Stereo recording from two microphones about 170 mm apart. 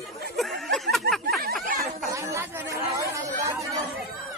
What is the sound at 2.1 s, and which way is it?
Chatter, 15° right (ahead or behind).